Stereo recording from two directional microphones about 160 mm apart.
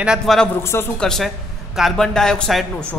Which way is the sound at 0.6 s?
15° left (ahead or behind).